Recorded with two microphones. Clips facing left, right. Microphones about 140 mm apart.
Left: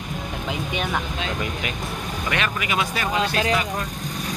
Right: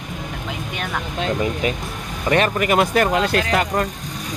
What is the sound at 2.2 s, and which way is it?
Speech, 40° right (ahead or behind).